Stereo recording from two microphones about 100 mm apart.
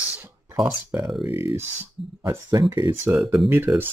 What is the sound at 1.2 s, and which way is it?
Speech, 65° left (ahead or behind).